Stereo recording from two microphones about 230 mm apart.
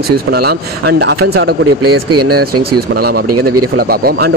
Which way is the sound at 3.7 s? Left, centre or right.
Right.